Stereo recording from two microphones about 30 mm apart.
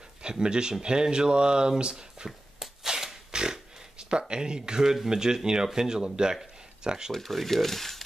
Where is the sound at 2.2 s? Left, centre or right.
Right.